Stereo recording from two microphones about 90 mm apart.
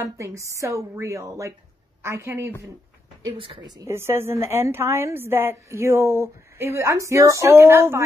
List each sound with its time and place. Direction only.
0.0 s a woman's voice: 35° right (ahead or behind)
3.3 s a woman's voice: 75° right (ahead or behind)
3.8 s a woman's voice: 30° right (ahead or behind)